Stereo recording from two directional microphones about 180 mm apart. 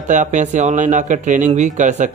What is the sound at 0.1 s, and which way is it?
Speech, 45° right (ahead or behind).